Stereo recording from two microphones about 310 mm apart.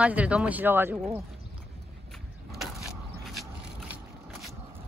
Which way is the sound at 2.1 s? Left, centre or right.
Centre.